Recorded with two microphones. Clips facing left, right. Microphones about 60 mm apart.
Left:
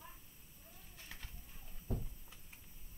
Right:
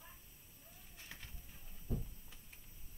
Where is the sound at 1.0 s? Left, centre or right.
Centre.